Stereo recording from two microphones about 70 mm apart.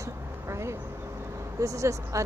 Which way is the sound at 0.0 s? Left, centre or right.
Right.